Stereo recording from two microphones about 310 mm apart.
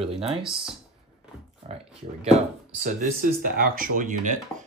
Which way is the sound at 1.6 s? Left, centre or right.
Centre.